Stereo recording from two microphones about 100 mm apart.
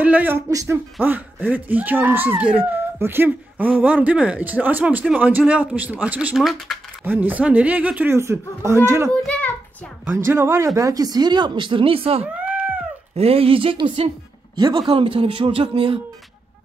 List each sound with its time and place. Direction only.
0.0 s speech: 15° right (ahead or behind)
0.5 s speech: 35° right (ahead or behind)
1.0 s speech: 15° right (ahead or behind)
6.3 s speech: centre (ahead or behind)
7.1 s speech: 20° right (ahead or behind)
8.1 s speech: 25° right (ahead or behind)
9.2 s a sound: 5° left (ahead or behind)
10.1 s speech: 25° right (ahead or behind)
10.8 s speech: 35° right (ahead or behind); by 12.3 s 70° right (ahead or behind)
12.4 s cat: 10° right (ahead or behind)
13.1 s speech: 85° right; by 16.0 s 60° right (ahead or behind)